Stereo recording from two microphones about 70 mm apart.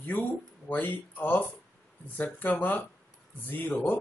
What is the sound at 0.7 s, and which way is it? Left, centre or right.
A man's voice, left.